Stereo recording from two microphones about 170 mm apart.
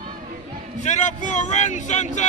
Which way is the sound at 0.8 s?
45° left (ahead or behind).